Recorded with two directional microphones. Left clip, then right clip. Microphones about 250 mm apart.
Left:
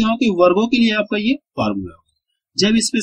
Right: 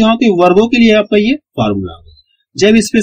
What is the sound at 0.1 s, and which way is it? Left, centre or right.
Speech, centre.